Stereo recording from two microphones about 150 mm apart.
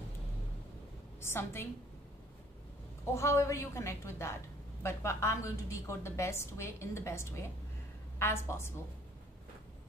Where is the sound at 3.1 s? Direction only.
20° left (ahead or behind).